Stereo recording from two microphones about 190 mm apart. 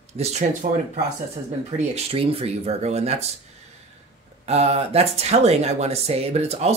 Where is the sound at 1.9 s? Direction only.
30° right (ahead or behind).